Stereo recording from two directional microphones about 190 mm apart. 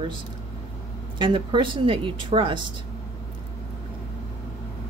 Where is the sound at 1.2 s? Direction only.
25° right (ahead or behind).